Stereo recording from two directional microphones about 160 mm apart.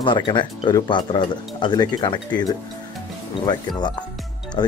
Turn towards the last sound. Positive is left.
turn(degrees=25)  # may be behind; listen again after turning